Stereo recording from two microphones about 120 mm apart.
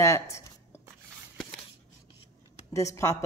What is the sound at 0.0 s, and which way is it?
Speech, 25° left (ahead or behind).